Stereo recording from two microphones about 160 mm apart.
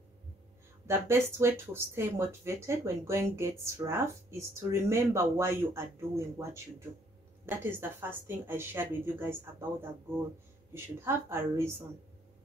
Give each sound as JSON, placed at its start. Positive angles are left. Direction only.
{"t": 0.8, "sound": "speech", "side_deg": -15}